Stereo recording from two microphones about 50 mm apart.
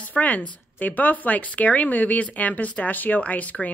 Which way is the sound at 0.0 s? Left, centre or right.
Left.